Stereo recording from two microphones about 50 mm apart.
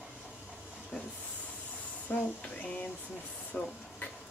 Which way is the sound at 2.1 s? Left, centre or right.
Left.